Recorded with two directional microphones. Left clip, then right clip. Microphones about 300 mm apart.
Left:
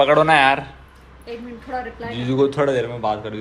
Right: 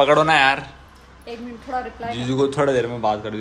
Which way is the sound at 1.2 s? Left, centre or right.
Right.